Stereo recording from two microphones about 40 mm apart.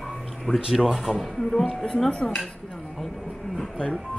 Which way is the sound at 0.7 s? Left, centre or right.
Centre.